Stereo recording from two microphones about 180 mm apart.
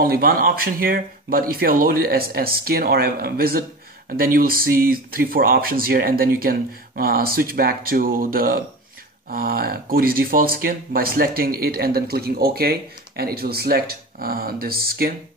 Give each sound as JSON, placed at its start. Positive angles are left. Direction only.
{"t": 0.0, "sound": "speech", "side_deg": -55}